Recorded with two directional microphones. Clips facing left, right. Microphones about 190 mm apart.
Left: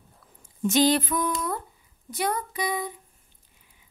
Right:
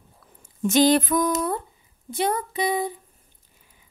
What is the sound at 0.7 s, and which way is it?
Speech, 50° right (ahead or behind).